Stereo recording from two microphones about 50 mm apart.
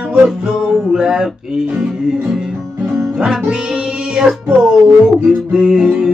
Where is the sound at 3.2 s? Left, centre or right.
Right.